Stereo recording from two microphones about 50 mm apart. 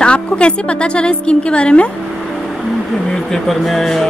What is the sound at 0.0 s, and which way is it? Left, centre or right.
A woman's voice, left.